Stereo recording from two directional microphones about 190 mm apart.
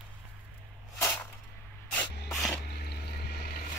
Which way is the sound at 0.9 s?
10° left (ahead or behind).